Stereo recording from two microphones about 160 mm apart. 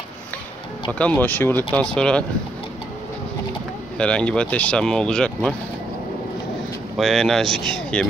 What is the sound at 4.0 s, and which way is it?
Speech, 5° left (ahead or behind).